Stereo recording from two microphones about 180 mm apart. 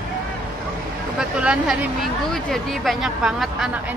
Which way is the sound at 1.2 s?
5° right (ahead or behind).